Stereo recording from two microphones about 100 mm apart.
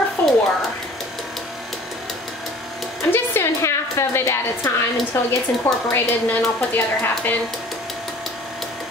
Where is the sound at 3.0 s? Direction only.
25° left (ahead or behind).